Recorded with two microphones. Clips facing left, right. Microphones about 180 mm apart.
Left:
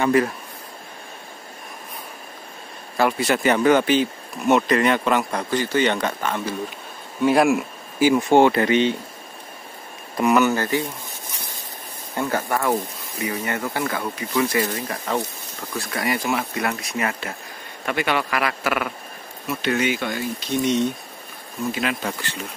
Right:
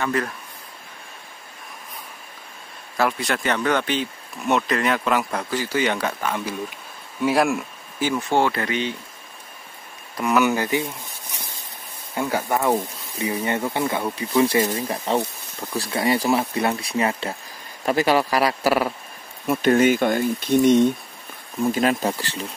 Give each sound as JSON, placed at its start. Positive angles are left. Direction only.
{"t": 0.0, "sound": "speech", "side_deg": 10}
{"t": 3.0, "sound": "speech", "side_deg": 5}
{"t": 8.0, "sound": "speech", "side_deg": 15}
{"t": 10.4, "sound": "speech", "side_deg": -15}
{"t": 12.2, "sound": "speech", "side_deg": -10}
{"t": 13.2, "sound": "speech", "side_deg": -30}
{"t": 19.4, "sound": "speech", "side_deg": -50}
{"t": 21.7, "sound": "speech", "side_deg": -40}